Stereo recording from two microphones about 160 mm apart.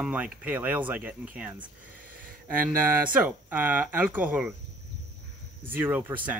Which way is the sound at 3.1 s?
10° right (ahead or behind).